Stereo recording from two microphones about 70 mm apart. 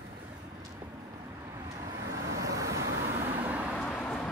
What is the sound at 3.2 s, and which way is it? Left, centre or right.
Vehicle, right.